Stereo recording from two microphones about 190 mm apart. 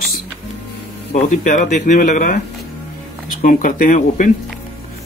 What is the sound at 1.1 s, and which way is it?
Speech, 40° left (ahead or behind).